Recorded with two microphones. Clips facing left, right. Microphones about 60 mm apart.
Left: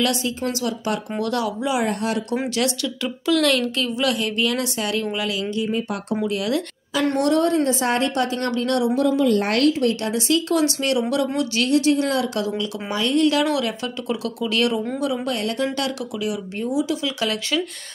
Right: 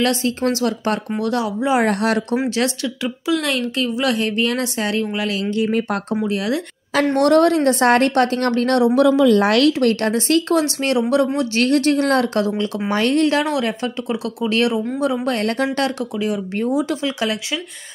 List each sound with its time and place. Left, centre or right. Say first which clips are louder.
0.0 s speech: right 3 dB; right
0.4 s speech: right 5 dB; right
1.2 s a woman's voice: right 2 dB; right
1.9 s speech: right 5 dB; right
2.5 s a woman's voice: right 2 dB; right
5.6 s speech: right 6 dB; right
6.2 s a woman's voice: even; right
7.2 s speech: right 5 dB; right
9.0 s speech: right 6 dB; right
10.1 s speech: right 3 dB; right
11.6 s speech: right 2 dB; right
15.0 s speech: right 4 dB; right